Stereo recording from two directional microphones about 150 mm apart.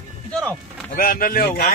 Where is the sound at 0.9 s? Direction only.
75° left (ahead or behind).